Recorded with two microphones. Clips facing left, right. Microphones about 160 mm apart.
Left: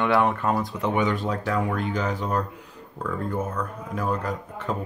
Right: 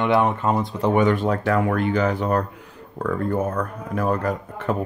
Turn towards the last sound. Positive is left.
turn(degrees=-60)  # may be behind; listen again after turning